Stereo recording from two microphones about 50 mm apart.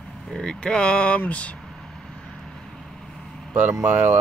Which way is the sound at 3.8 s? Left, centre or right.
Right.